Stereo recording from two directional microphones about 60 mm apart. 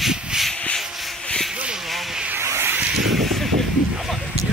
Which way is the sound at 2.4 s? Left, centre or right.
Right.